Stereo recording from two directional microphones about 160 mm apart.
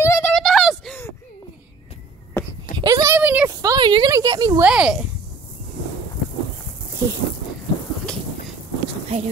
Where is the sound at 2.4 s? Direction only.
15° left (ahead or behind).